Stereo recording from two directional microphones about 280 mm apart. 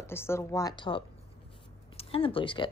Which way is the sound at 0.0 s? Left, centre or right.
Centre.